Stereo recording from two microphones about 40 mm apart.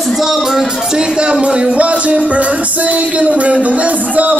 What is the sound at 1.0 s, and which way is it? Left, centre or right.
Music, right.